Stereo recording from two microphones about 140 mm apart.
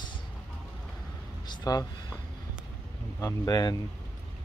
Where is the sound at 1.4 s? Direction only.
30° left (ahead or behind).